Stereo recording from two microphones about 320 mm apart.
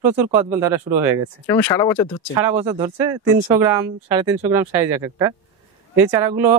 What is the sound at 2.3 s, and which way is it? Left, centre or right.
Speech, centre.